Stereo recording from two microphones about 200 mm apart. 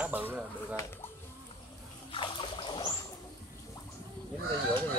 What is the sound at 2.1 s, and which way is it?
Splash, 25° left (ahead or behind).